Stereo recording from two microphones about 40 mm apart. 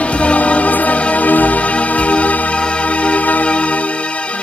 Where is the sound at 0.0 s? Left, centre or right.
Left.